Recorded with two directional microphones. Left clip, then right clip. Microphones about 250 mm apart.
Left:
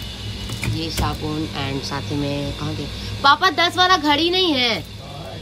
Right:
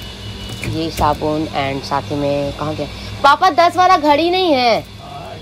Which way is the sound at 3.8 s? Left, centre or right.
Centre.